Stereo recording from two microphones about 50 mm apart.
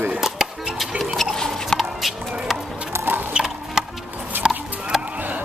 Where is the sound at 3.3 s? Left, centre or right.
Centre.